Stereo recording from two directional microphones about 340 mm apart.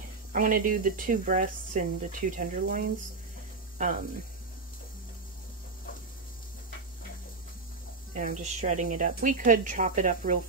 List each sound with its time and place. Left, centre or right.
0.3 s speech: right
8.1 s speech: right